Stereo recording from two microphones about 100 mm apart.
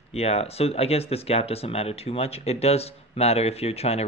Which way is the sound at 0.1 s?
90° left.